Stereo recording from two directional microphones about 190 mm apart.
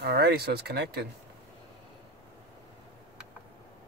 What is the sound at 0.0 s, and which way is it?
Speech, 60° right (ahead or behind).